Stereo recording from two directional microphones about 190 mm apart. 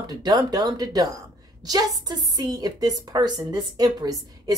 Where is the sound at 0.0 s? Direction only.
20° right (ahead or behind).